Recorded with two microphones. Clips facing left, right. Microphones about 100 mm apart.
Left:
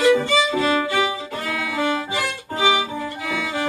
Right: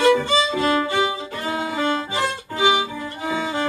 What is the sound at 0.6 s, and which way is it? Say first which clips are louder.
Violin: even; 30° right (ahead or behind).